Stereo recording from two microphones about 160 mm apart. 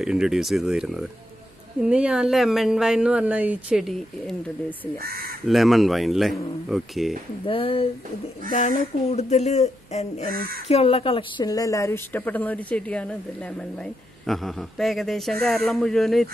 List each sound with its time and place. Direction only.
0.0 s speech: 5° right (ahead or behind)
7.4 s speech: 35° left (ahead or behind)
8.5 s a woman's voice: 50° left (ahead or behind); by 13.0 s 10° left (ahead or behind)
14.2 s speech: centre (ahead or behind)